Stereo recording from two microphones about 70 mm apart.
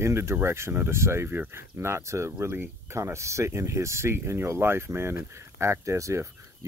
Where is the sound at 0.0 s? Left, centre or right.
Right.